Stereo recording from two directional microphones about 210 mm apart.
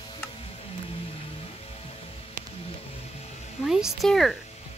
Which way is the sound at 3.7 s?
Centre (ahead or behind).